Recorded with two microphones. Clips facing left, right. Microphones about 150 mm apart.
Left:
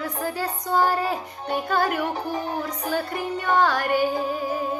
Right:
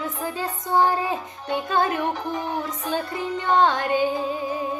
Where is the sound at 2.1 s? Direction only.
30° left (ahead or behind).